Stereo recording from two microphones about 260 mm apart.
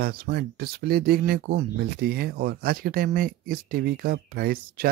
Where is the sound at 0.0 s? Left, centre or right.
Right.